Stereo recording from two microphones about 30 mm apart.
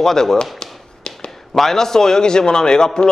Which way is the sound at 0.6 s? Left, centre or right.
Left.